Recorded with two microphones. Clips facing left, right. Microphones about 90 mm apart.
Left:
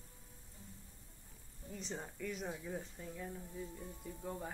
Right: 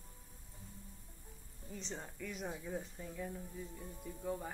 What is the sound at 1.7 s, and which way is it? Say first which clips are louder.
Speech: left 1 dB; 5° left (ahead or behind).